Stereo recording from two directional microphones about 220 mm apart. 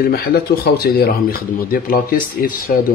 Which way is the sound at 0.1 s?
45° left (ahead or behind).